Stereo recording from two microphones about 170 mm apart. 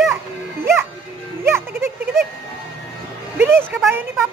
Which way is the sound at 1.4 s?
15° right (ahead or behind).